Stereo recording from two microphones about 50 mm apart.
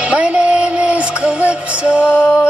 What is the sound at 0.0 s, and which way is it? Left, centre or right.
Music, right.